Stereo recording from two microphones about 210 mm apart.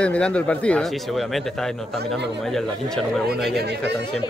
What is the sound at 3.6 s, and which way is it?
Speech, 50° right (ahead or behind).